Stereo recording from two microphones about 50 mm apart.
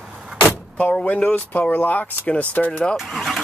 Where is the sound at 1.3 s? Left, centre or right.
Left.